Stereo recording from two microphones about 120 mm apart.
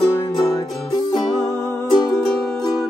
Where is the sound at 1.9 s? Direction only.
40° left (ahead or behind).